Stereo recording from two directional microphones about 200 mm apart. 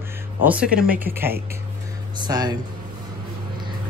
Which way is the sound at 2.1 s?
20° right (ahead or behind).